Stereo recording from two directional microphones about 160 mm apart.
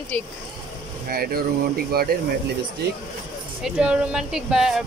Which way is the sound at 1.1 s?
70° right (ahead or behind).